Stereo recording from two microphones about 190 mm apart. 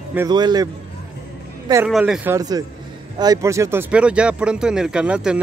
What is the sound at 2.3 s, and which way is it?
A man's voice, 20° right (ahead or behind).